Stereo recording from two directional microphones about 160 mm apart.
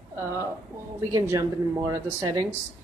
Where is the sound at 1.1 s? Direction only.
20° right (ahead or behind).